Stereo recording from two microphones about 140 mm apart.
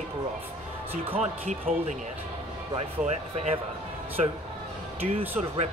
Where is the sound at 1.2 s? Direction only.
55° right (ahead or behind).